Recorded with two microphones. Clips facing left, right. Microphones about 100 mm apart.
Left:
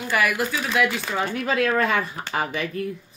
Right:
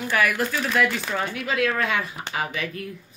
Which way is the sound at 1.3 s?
40° left (ahead or behind).